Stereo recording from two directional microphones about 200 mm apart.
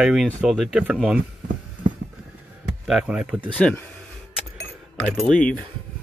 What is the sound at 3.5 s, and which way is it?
Speech, 5° left (ahead or behind).